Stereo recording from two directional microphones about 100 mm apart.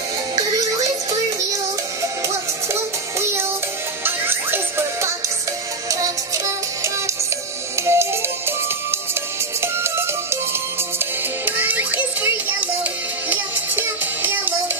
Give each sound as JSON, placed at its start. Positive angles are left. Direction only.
{"t": 2.2, "sound": "music", "side_deg": -25}